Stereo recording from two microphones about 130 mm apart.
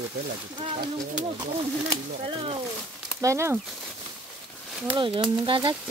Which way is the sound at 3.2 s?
20° right (ahead or behind).